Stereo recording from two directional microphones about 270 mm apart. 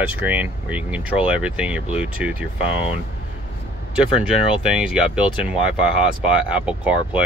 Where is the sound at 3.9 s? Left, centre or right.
Centre.